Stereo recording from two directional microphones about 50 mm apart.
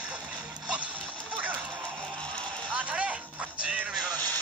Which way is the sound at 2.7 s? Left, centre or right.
Right.